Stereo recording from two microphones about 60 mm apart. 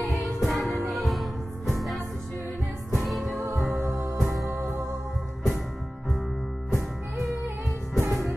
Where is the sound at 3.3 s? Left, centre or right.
Right.